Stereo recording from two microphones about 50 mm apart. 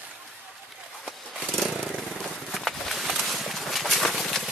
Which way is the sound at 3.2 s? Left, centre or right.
Centre.